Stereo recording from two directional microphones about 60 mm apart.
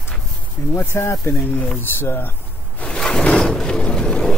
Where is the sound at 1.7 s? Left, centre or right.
Left.